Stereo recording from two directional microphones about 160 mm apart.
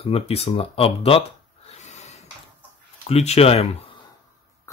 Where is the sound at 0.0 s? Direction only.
35° left (ahead or behind).